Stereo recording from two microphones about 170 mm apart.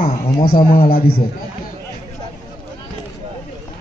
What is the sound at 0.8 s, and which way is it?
Speech, 60° left (ahead or behind).